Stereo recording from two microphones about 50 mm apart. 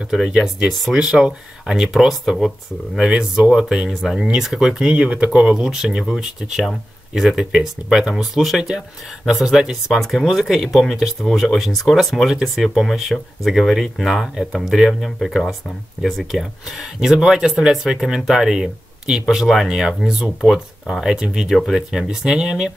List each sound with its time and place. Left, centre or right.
0.1 s speech: centre
19.2 s speech: centre